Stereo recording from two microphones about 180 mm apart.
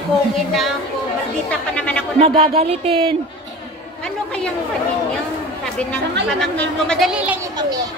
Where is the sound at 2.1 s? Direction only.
30° right (ahead or behind).